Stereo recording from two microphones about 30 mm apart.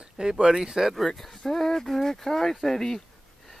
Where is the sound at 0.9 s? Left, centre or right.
Centre.